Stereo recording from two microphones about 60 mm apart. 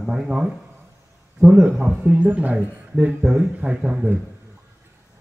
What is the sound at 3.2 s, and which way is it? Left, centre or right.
Speech, centre.